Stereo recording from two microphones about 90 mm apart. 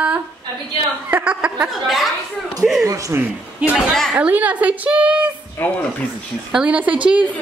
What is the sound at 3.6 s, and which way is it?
A woman's voice, 10° right (ahead or behind).